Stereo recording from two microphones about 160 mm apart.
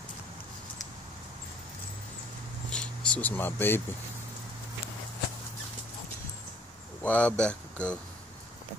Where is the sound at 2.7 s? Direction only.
5° left (ahead or behind).